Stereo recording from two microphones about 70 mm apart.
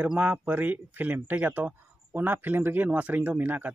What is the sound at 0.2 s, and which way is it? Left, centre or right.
Speech, right.